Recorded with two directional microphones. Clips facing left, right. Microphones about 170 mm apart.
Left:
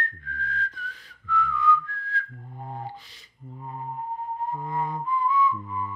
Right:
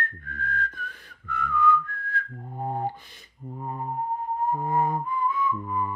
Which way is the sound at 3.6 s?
45° right (ahead or behind).